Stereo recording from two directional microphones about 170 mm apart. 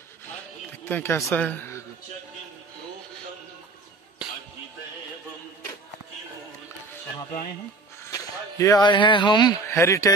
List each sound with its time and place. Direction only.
0.8 s a woman's voice: 15° left (ahead or behind)
8.0 s speech: 15° left (ahead or behind)